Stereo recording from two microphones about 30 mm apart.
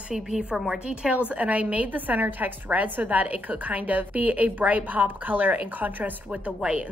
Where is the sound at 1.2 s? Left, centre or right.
Right.